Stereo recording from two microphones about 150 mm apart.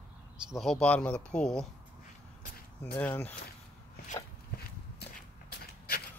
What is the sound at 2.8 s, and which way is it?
Speech, 15° left (ahead or behind).